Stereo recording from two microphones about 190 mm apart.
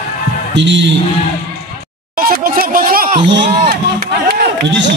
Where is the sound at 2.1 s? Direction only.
50° right (ahead or behind).